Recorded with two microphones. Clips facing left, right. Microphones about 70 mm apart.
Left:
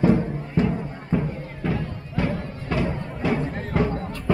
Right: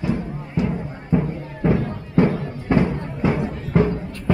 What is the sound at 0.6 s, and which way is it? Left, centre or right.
Music, centre.